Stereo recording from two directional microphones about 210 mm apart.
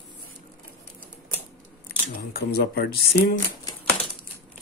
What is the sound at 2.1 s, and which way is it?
Speech, 50° left (ahead or behind).